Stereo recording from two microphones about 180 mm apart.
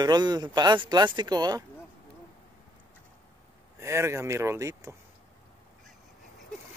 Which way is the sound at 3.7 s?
15° right (ahead or behind).